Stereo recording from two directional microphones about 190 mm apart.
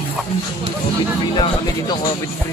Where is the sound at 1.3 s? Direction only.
25° left (ahead or behind).